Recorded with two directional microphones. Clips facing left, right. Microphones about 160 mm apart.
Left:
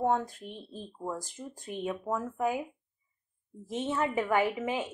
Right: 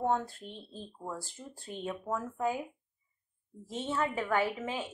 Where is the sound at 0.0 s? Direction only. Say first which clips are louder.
Left 2 dB; 10° left (ahead or behind).